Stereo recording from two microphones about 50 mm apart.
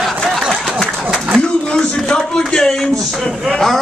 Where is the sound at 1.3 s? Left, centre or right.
Centre.